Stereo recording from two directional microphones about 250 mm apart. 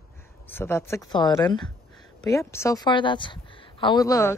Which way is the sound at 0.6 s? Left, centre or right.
Centre.